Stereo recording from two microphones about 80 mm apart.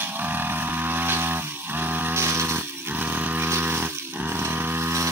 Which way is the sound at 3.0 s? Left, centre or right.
Right.